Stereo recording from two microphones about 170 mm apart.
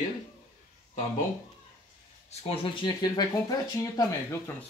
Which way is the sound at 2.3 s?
35° left (ahead or behind).